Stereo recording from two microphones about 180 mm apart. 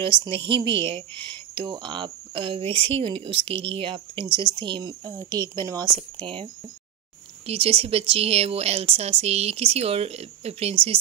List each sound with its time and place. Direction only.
0.0 s speech: 25° right (ahead or behind)